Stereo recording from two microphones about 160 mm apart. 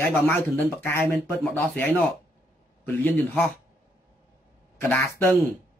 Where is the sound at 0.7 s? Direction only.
15° left (ahead or behind).